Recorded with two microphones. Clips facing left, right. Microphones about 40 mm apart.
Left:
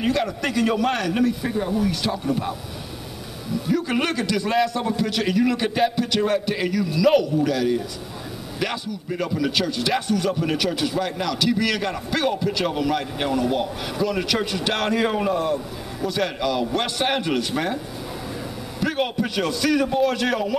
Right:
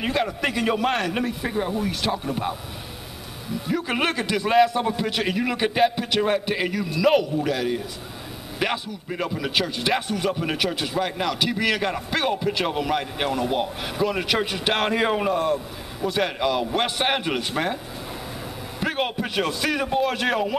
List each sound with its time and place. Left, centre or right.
0.0 s a man's voice: centre
3.6 s a man's voice: centre
16.1 s a man's voice: centre
18.8 s a man's voice: centre